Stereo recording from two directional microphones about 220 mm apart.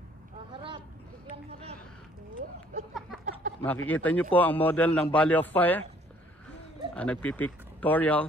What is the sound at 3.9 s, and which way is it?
Speech, 5° left (ahead or behind).